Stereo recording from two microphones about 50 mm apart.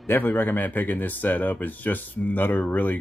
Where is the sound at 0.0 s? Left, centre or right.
Left.